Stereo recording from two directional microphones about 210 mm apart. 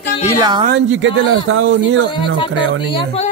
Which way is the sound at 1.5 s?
65° right (ahead or behind).